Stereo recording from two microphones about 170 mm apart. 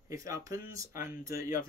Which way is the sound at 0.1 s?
20° right (ahead or behind).